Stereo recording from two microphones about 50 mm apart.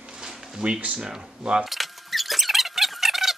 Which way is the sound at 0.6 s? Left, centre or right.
Right.